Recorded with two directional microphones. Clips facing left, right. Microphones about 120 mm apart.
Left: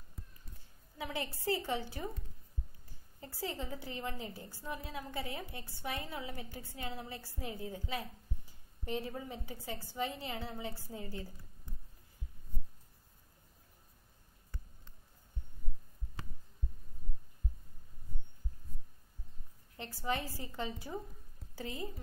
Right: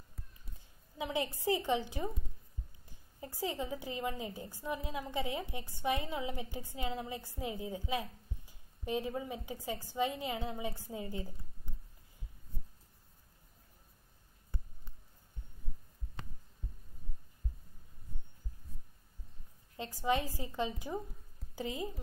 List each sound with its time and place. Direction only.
0.9 s a woman's voice: 20° right (ahead or behind)
3.2 s a woman's voice: 15° right (ahead or behind)
14.5 s a sound: 15° right (ahead or behind)
19.8 s a woman's voice: 15° right (ahead or behind)